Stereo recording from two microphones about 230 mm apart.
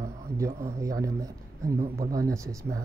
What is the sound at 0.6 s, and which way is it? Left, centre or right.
Speech, centre.